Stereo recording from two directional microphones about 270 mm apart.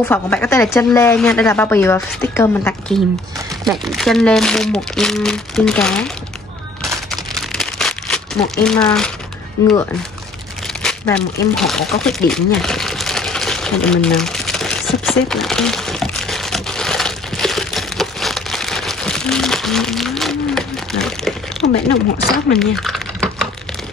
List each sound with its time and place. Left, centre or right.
0.0 s a woman's voice: centre
6.8 s a sound: centre
8.6 s speech: centre
10.8 s speech: centre
12.3 s sewing machine: centre
21.6 s a sound: left
22.6 s typing: centre